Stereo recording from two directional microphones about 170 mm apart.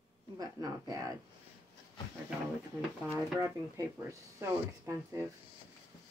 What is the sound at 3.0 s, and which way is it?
Speech, 10° right (ahead or behind).